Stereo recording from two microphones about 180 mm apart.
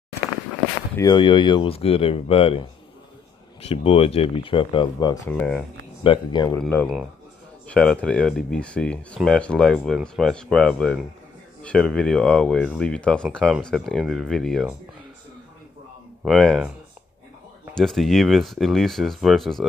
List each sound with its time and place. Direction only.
0.9 s speech: 25° left (ahead or behind)
5.3 s speech: 5° left (ahead or behind)
6.0 s speech: 25° left (ahead or behind)
6.6 s speech: 10° left (ahead or behind)
16.3 s speech: centre (ahead or behind)
17.7 s speech: centre (ahead or behind)